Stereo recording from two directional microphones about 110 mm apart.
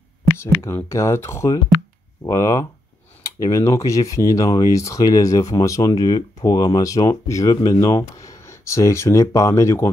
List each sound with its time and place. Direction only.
0.4 s speech: 25° left (ahead or behind)